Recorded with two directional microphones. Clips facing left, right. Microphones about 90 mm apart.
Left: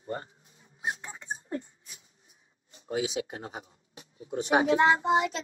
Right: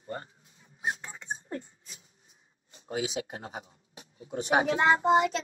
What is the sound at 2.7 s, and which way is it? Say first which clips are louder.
Speech: left 2 dB; 40° right (ahead or behind).